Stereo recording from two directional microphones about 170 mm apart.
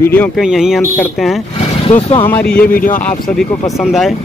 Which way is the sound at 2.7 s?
55° left (ahead or behind).